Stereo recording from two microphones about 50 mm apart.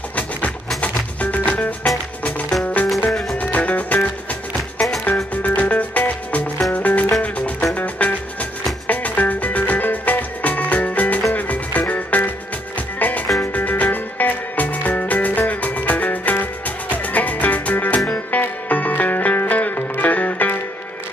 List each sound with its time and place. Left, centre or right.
0.7 s music: left
3.1 s music: centre
3.3 s music: left